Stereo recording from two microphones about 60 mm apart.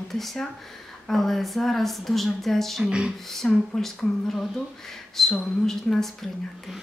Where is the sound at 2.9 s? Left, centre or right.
Centre.